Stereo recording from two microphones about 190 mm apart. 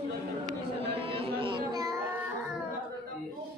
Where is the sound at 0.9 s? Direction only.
30° right (ahead or behind).